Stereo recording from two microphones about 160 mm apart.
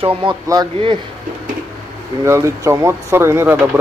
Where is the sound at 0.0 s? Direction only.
30° right (ahead or behind).